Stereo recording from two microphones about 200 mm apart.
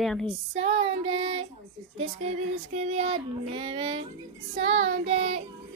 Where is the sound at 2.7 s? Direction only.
35° right (ahead or behind).